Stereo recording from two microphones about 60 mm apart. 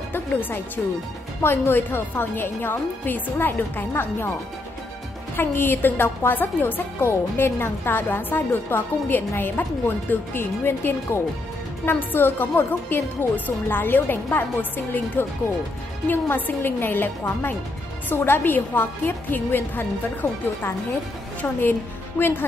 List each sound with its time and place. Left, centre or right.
0.1 s music: left
1.4 s a woman's voice: left
5.3 s a woman's voice: left
22.2 s a woman's voice: left